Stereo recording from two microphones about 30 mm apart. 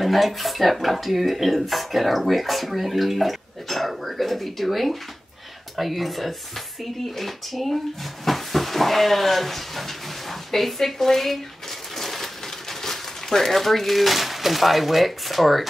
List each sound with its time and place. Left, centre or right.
0.0 s speech: centre
11.9 s a sound: centre
13.3 s speech: centre